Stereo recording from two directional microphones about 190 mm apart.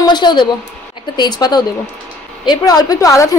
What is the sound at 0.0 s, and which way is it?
A woman's voice, 25° left (ahead or behind).